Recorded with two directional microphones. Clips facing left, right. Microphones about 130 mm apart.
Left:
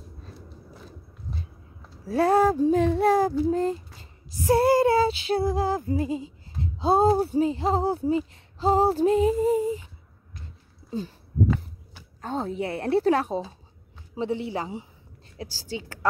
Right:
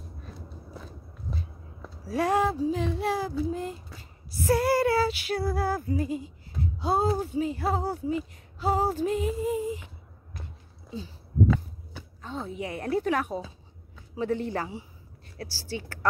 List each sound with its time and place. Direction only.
2.0 s speech: 30° left (ahead or behind)
2.5 s speech: 50° left (ahead or behind)
4.6 s female singing: 25° left (ahead or behind)
7.2 s speech: 40° left (ahead or behind)
7.5 s speech: 25° left (ahead or behind)
12.2 s speech: 40° left (ahead or behind)
14.1 s female singing: 15° left (ahead or behind)
15.3 s speech: 15° left (ahead or behind)